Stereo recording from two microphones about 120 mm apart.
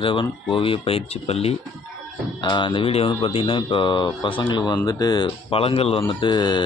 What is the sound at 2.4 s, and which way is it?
A man's voice, 40° left (ahead or behind).